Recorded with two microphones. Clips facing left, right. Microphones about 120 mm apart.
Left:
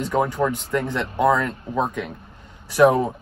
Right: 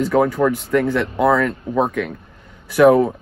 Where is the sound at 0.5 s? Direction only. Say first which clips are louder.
Right 6 dB; 25° left (ahead or behind).